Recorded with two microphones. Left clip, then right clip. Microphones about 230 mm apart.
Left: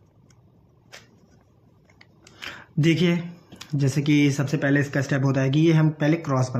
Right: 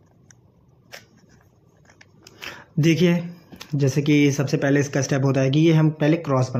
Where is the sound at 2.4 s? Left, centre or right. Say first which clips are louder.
Right 2 dB; centre.